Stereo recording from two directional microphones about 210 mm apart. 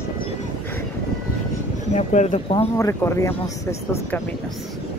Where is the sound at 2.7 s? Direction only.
15° left (ahead or behind).